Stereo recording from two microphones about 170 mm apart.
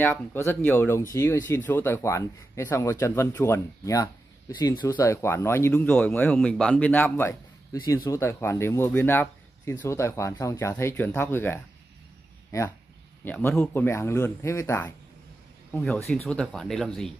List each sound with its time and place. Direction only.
0.0 s speech: 15° left (ahead or behind)
12.4 s a sound: 15° left (ahead or behind)
13.2 s speech: 10° left (ahead or behind)
16.3 s speech: 5° left (ahead or behind)